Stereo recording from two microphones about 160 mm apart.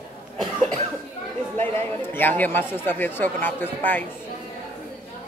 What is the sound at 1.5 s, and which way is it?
Speech, 15° left (ahead or behind).